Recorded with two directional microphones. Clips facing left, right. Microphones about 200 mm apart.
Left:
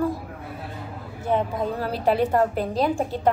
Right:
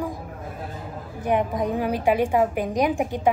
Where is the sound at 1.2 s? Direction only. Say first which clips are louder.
Right 1 dB; 15° right (ahead or behind).